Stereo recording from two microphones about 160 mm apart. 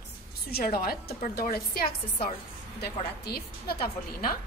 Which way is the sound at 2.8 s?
75° left (ahead or behind).